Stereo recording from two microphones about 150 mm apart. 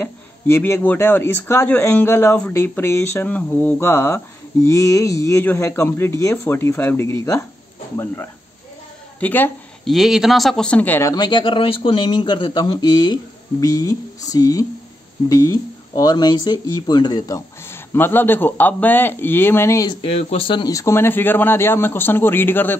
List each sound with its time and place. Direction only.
0.0 s speech: 15° left (ahead or behind)
9.2 s speech: 15° left (ahead or behind)
9.8 s speech: centre (ahead or behind); by 17.4 s 25° left (ahead or behind)
17.6 s speech: 15° left (ahead or behind)
19.9 s speech: 40° left (ahead or behind); by 22.8 s 15° left (ahead or behind)